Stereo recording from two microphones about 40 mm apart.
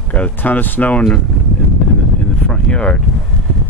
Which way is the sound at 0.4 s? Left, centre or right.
Left.